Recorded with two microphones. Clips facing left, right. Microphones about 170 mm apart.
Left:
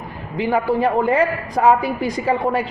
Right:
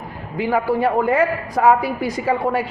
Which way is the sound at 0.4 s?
5° right (ahead or behind).